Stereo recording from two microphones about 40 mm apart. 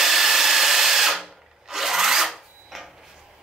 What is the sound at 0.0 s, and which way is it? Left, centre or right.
Wood, centre.